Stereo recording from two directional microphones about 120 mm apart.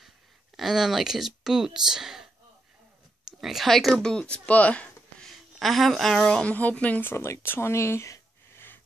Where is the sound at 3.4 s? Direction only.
Centre (ahead or behind).